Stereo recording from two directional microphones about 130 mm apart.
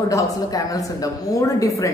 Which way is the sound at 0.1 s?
25° left (ahead or behind).